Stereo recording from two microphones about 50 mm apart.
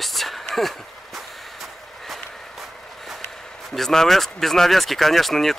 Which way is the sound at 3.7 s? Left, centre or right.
Centre.